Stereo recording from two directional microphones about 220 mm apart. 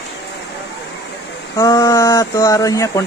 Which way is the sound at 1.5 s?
15° left (ahead or behind).